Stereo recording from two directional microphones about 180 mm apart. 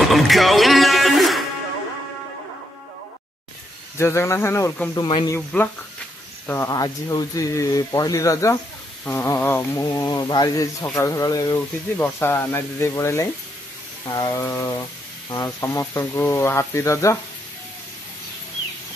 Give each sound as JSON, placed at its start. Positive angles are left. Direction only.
{"t": 0.0, "sound": "music", "side_deg": 0}
{"t": 4.0, "sound": "speech", "side_deg": 15}
{"t": 4.9, "sound": "speech", "side_deg": 25}
{"t": 5.3, "sound": "speech", "side_deg": 10}